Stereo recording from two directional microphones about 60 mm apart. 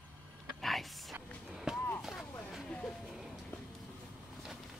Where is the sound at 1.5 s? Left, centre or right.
Centre.